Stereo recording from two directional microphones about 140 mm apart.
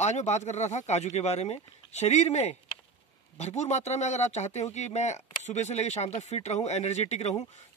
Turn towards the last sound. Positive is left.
turn(degrees=50)  # may be behind; listen again after turning